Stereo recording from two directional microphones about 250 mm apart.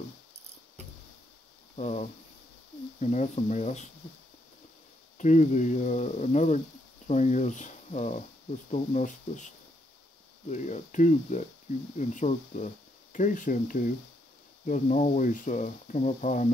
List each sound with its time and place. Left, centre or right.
1.8 s speech: left
5.1 s speech: left
10.5 s speech: left